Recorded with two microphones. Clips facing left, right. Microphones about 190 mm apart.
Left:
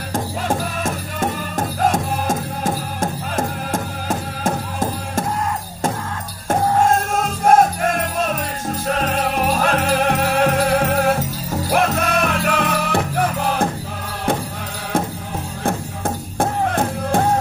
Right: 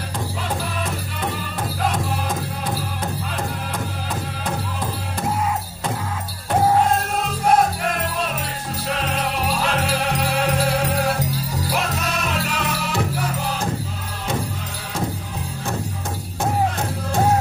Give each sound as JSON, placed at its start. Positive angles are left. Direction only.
{"t": 0.1, "sound": "music", "side_deg": 45}
{"t": 6.8, "sound": "music", "side_deg": 45}
{"t": 16.3, "sound": "music", "side_deg": 55}